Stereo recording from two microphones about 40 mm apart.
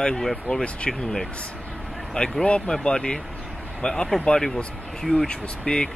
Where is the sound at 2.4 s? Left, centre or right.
Left.